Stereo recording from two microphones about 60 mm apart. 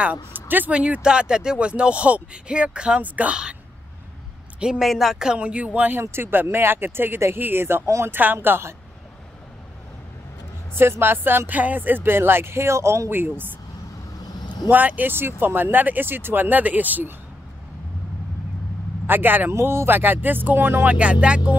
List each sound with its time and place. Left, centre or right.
0.0 s speech: right
4.6 s speech: centre; by 6.0 s right
6.0 s speech: right
7.8 s speech: right
8.1 s speech: right
10.8 s speech: right
13.1 s speech: right
14.7 s speech: right
19.0 s speech: right
19.5 s speech: right
20.9 s speech: right